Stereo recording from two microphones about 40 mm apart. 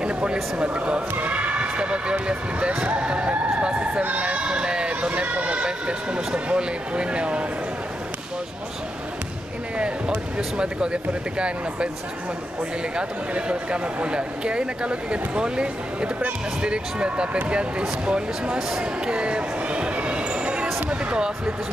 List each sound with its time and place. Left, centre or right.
0.0 s a sound: right
1.1 s speech: right
4.0 s speech: right
4.4 s speech: right
5.2 s speech: right
9.8 s speech: right
12.9 s speech: right
18.7 s a sound: right